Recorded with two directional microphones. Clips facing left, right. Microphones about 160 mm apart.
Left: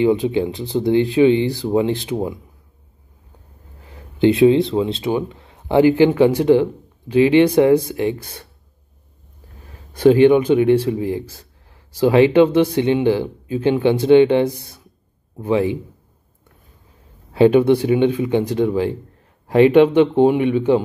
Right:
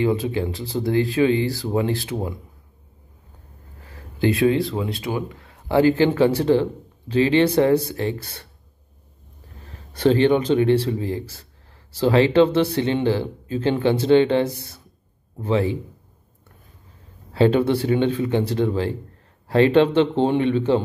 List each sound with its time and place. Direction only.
0.0 s speech: 20° left (ahead or behind)
3.8 s a sound: 20° left (ahead or behind)
4.7 s speech: 25° left (ahead or behind)
9.9 s speech: 10° left (ahead or behind)
17.3 s speech: 15° left (ahead or behind)